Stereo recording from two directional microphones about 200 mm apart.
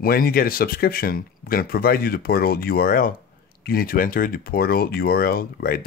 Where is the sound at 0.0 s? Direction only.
45° left (ahead or behind).